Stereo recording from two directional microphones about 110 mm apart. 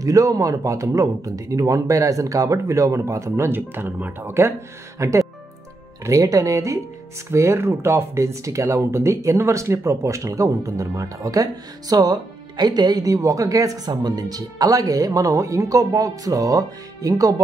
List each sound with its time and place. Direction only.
0.0 s speech: 30° right (ahead or behind)